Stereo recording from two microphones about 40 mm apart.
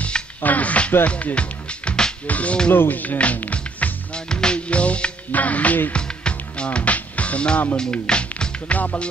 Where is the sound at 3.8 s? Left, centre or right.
Left.